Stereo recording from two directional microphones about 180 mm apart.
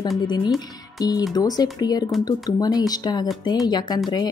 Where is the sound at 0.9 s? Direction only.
20° left (ahead or behind).